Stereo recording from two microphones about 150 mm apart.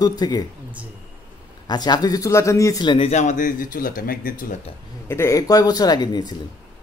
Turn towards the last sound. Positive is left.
turn(degrees=30)  # may be behind; listen again after turning